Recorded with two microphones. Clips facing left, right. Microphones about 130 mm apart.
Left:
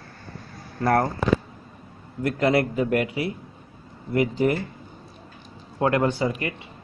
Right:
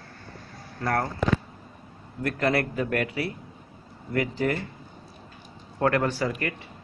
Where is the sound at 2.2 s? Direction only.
20° left (ahead or behind).